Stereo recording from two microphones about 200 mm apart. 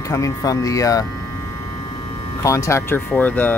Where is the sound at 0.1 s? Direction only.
15° left (ahead or behind).